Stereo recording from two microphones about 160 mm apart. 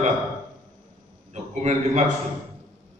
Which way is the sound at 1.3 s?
45° right (ahead or behind).